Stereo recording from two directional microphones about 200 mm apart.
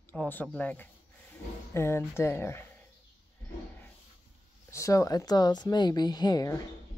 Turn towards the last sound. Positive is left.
turn(degrees=20)  # may be behind; listen again after turning